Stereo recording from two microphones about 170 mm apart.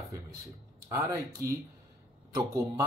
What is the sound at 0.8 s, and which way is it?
Speech, 15° right (ahead or behind).